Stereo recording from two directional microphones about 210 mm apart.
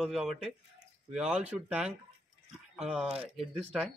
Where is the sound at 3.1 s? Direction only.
30° right (ahead or behind).